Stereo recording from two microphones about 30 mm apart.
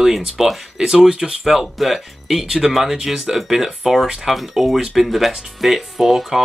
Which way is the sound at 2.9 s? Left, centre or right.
Centre.